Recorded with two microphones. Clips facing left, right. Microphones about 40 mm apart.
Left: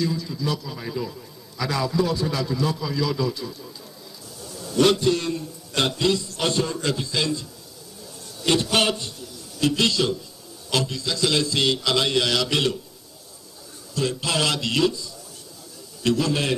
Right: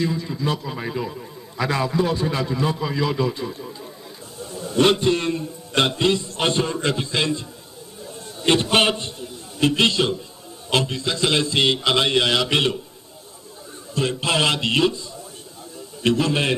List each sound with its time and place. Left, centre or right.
0.0 s a man's voice: right
13.9 s a man's voice: right
16.0 s a man's voice: right